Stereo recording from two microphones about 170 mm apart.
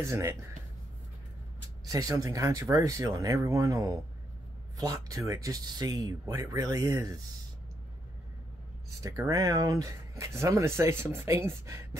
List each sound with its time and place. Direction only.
0.0 s speech: 15° right (ahead or behind)
1.9 s speech: 20° right (ahead or behind)
9.0 s speech: 20° right (ahead or behind)